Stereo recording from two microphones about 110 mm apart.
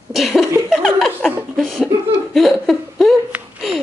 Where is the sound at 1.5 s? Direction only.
5° right (ahead or behind).